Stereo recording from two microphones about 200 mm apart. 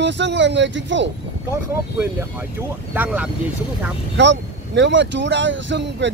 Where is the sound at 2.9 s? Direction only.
5° right (ahead or behind).